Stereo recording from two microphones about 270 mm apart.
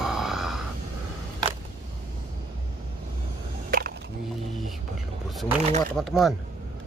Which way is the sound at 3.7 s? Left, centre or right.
Right.